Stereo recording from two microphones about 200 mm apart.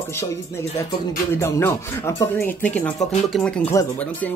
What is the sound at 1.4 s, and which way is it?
Speech, 15° left (ahead or behind).